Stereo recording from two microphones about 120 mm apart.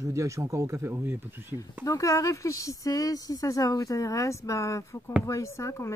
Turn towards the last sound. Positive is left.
turn(degrees=25)  # may be behind; listen again after turning